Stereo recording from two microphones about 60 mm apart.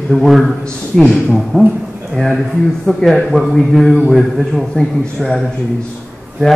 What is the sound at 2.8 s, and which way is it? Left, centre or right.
A man's voice, centre.